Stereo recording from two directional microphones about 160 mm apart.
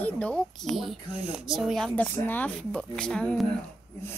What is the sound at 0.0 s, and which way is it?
A child's voice, 5° left (ahead or behind).